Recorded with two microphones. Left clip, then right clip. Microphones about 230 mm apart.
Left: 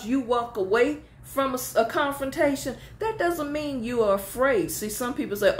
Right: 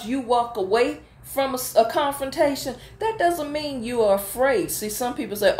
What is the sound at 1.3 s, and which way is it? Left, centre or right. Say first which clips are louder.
A woman's voice: right 4 dB; centre.